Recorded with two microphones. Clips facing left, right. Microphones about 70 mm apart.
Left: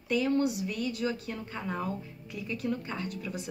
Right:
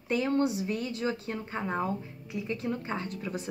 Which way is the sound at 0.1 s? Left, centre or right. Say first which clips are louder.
Even; right.